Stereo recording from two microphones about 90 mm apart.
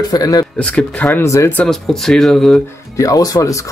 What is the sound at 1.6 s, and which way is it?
Speech, 5° left (ahead or behind).